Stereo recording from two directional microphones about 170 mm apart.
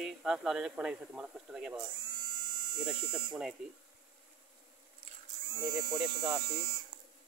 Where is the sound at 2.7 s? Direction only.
25° right (ahead or behind).